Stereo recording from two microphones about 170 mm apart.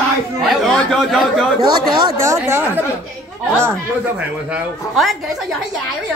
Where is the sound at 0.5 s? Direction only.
Centre (ahead or behind).